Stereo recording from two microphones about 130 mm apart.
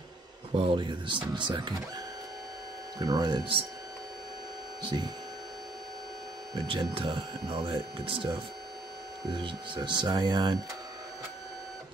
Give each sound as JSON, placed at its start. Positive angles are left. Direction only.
{"t": 0.6, "sound": "speech", "side_deg": -40}
{"t": 3.0, "sound": "speech", "side_deg": -30}
{"t": 4.9, "sound": "speech", "side_deg": -40}
{"t": 6.7, "sound": "speech", "side_deg": -40}
{"t": 9.3, "sound": "speech", "side_deg": -40}